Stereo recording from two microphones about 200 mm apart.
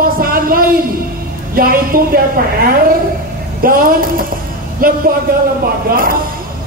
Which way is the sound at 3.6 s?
45° right (ahead or behind).